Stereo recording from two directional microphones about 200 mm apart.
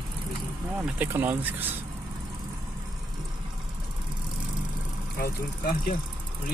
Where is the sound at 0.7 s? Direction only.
10° right (ahead or behind).